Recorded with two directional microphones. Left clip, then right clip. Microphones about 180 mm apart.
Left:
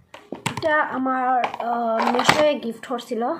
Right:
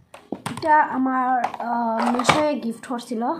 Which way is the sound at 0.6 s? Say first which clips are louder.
Right 3 dB; 5° right (ahead or behind).